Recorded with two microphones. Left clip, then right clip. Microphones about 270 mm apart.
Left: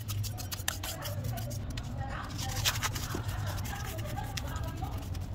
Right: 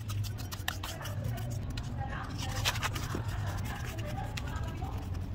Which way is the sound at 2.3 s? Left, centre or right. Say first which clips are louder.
Left 1 dB; centre.